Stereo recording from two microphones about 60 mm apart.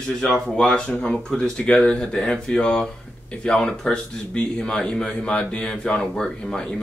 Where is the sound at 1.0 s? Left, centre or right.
Centre.